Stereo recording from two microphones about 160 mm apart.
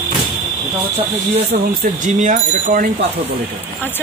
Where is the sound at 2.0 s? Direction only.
50° right (ahead or behind).